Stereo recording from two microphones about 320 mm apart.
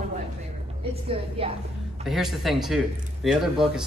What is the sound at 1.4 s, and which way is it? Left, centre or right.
Speech, centre.